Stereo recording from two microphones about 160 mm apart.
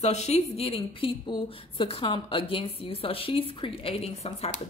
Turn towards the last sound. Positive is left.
turn(degrees=40)  # may be behind; listen again after turning